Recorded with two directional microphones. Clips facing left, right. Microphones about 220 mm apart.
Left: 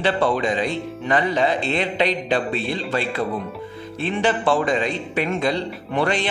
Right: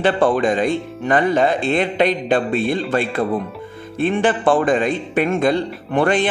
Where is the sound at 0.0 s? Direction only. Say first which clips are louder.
Right 4 dB; 50° right (ahead or behind).